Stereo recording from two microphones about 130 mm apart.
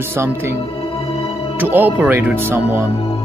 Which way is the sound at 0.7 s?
50° left (ahead or behind).